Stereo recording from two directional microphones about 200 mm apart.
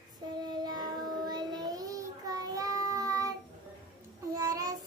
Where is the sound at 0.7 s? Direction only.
20° right (ahead or behind).